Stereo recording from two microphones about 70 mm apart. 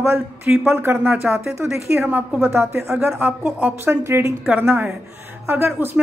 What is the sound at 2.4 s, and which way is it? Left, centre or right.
Speech, right.